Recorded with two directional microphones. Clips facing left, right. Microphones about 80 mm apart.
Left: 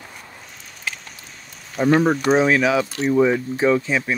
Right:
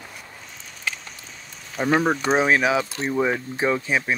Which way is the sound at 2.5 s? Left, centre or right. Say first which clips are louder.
Left 2 dB; right.